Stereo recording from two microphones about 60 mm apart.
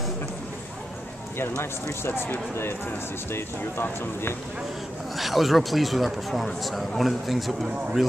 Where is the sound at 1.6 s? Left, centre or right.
Left.